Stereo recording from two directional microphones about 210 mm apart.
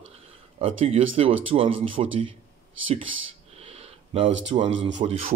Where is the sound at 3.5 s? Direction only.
30° right (ahead or behind).